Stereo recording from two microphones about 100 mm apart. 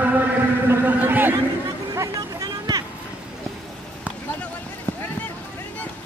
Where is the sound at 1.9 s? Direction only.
35° right (ahead or behind).